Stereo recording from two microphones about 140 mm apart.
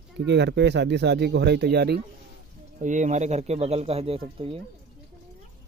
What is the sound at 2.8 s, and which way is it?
Speech, 60° right (ahead or behind).